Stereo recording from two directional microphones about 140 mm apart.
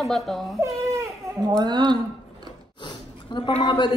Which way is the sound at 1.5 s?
30° right (ahead or behind).